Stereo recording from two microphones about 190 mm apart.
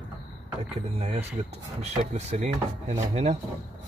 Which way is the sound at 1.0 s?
40° right (ahead or behind).